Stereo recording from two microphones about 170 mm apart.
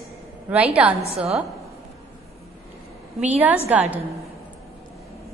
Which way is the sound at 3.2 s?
10° right (ahead or behind).